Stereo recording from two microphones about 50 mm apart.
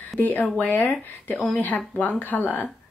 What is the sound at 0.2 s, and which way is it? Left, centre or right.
Speech, left.